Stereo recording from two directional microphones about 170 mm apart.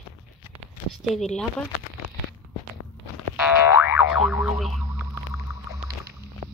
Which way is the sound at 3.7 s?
15° right (ahead or behind).